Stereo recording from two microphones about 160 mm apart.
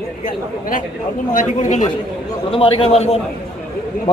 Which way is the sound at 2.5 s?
35° left (ahead or behind).